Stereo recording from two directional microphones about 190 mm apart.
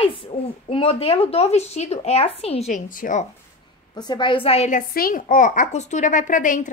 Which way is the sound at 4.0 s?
25° left (ahead or behind).